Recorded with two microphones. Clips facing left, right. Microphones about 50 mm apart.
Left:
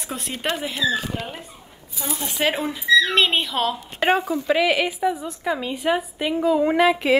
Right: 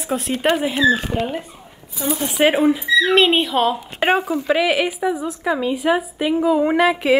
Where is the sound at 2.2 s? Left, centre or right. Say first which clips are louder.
Right 7 dB; centre.